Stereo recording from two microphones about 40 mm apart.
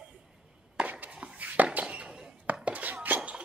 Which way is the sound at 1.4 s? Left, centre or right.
Right.